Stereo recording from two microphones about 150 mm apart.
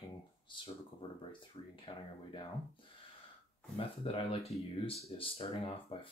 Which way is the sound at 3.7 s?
40° left (ahead or behind).